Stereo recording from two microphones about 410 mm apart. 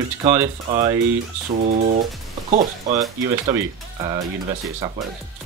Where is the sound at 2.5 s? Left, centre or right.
Centre.